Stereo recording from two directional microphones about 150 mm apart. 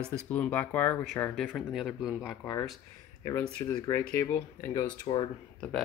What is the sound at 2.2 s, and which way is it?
Speech, 25° left (ahead or behind).